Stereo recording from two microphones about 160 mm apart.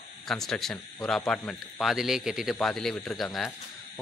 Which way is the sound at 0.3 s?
Centre (ahead or behind).